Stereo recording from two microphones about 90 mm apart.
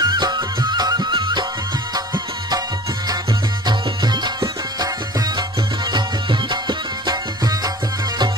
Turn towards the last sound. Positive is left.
turn(degrees=-45)  # may be behind; listen again after turning